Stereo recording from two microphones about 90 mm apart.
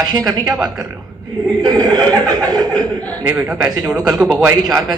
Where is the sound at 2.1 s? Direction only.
45° right (ahead or behind).